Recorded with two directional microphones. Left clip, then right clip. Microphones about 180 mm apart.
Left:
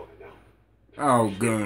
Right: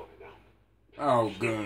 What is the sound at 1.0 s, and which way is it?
Speech, 45° left (ahead or behind).